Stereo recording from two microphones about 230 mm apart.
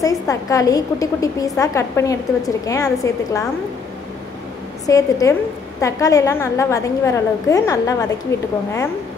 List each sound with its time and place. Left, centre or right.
0.0 s a woman's voice: centre
4.8 s a woman's voice: centre